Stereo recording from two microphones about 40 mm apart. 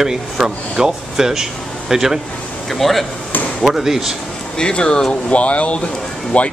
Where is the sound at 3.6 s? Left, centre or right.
Centre.